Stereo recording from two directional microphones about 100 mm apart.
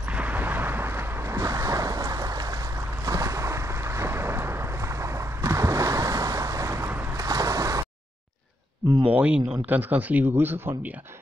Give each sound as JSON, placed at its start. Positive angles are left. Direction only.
{"t": 0.1, "sound": "a sound", "side_deg": -15}
{"t": 1.4, "sound": "ocean", "side_deg": -30}
{"t": 3.1, "sound": "boat", "side_deg": -30}
{"t": 9.1, "sound": "speech", "side_deg": -15}